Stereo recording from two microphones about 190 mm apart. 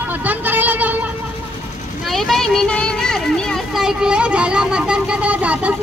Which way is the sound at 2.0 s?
Centre (ahead or behind).